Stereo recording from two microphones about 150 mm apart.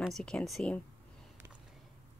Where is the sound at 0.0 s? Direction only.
5° left (ahead or behind).